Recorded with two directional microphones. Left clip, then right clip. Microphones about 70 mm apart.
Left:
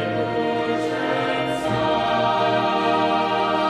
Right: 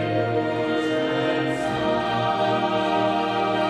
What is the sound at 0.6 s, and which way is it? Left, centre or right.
Music, centre.